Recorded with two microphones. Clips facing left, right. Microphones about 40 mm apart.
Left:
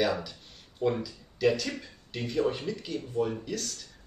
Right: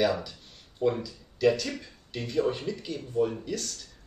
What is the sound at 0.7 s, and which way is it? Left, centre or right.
Speech, centre.